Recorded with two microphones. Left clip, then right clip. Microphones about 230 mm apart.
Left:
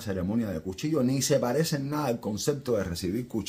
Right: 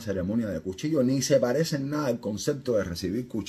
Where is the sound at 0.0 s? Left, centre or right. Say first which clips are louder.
Right 2 dB; centre.